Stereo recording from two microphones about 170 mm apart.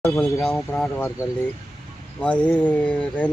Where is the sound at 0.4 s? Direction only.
Centre (ahead or behind).